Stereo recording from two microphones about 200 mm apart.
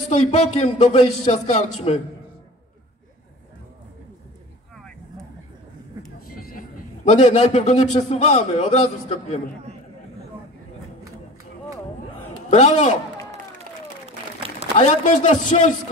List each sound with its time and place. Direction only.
0.1 s a man's voice: 35° left (ahead or behind)
4.7 s vehicle: centre (ahead or behind)
6.3 s vehicle: 45° left (ahead or behind)
7.1 s a man's voice: 35° left (ahead or behind)
12.4 s a man's voice: 35° left (ahead or behind)
14.8 s a man's voice: 35° left (ahead or behind)